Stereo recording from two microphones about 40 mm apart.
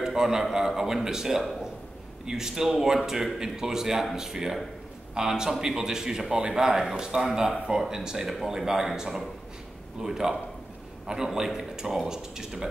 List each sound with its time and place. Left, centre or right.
0.0 s speech: centre